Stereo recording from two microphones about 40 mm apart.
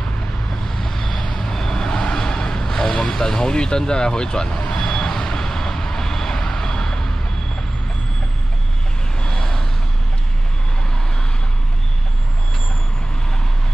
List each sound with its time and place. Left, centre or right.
0.7 s vehicle: centre
9.2 s vehicle: centre